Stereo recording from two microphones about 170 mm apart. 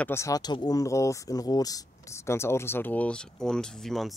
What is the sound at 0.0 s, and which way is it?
Speech, 15° left (ahead or behind).